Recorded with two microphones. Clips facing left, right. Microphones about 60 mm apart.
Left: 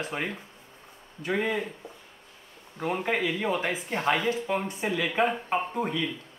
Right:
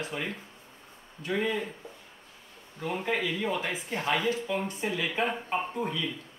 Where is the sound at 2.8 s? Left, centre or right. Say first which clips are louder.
Left 3 dB; left.